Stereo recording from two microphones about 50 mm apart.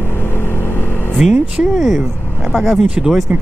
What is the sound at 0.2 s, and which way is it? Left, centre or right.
Vehicle, left.